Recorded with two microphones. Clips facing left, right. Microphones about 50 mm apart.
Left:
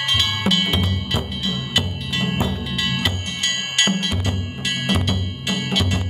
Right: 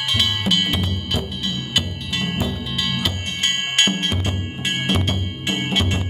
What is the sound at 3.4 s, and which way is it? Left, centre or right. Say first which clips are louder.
Music: right 2 dB; right.